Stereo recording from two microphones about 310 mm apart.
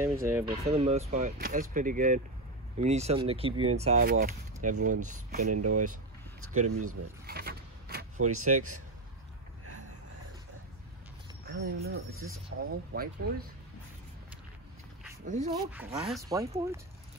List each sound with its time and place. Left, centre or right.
0.0 s speech: centre
0.7 s speech: centre
5.5 s speech: right
7.2 s a sound: right
8.2 s speech: right
11.4 s speech: right
15.2 s speech: right
15.5 s speech: centre